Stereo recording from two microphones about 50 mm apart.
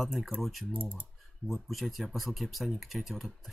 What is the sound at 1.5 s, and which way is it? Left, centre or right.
Speech, centre.